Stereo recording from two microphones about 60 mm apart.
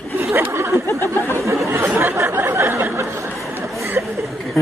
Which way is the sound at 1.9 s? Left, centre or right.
Right.